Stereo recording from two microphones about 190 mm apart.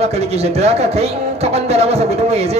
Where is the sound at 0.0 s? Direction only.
35° right (ahead or behind).